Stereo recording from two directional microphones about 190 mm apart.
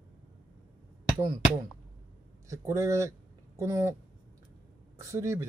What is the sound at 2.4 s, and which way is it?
Speech, 15° right (ahead or behind).